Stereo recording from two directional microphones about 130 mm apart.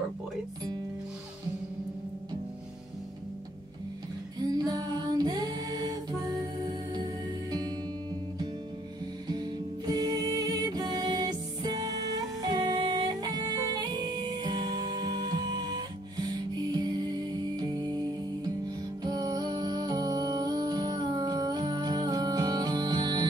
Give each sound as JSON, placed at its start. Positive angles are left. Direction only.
{"t": 4.4, "sound": "music", "side_deg": -30}
{"t": 9.3, "sound": "music", "side_deg": -30}